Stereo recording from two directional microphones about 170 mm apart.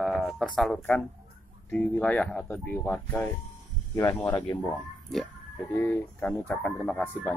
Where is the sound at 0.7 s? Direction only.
10° left (ahead or behind).